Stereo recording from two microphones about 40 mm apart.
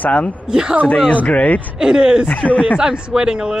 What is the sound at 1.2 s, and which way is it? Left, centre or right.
Speech, left.